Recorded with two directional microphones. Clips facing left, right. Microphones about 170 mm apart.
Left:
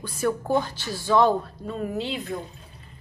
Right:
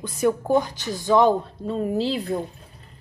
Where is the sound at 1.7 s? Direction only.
30° right (ahead or behind).